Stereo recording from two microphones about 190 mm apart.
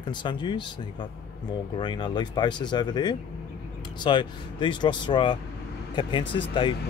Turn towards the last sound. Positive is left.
turn(degrees=25)  # may be behind; listen again after turning